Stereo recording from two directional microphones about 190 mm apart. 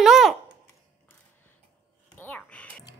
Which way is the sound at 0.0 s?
Centre (ahead or behind).